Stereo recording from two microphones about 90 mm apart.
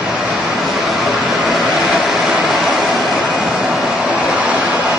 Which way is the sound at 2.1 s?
Centre (ahead or behind).